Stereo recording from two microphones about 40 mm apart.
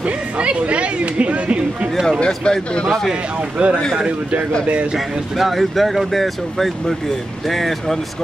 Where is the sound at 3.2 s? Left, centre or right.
Right.